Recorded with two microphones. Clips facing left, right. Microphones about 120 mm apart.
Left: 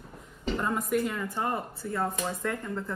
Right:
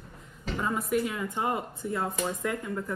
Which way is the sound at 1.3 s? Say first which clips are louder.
Right 1 dB; 15° right (ahead or behind).